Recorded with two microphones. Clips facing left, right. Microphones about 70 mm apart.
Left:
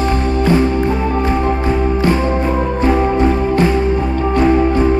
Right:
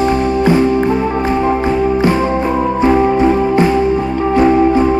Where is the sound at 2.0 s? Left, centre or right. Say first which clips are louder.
Right 2 dB; centre.